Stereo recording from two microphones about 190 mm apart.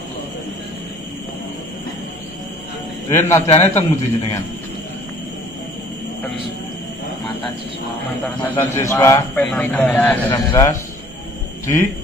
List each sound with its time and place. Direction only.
3.1 s a man's voice: 15° left (ahead or behind)
8.4 s a man's voice: 15° left (ahead or behind)
10.3 s a man's voice: 20° left (ahead or behind)